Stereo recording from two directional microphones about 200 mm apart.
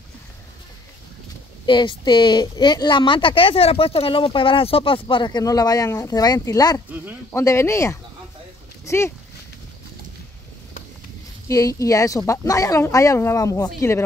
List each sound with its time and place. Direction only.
1.7 s speech: 25° left (ahead or behind)
11.4 s speech: 15° left (ahead or behind)